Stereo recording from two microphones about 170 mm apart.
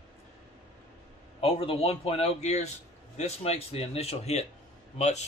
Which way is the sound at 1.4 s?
35° left (ahead or behind).